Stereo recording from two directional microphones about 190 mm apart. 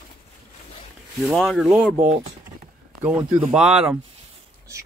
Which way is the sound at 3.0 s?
5° right (ahead or behind).